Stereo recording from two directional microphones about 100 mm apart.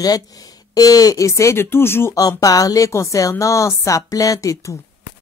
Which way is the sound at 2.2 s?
35° left (ahead or behind).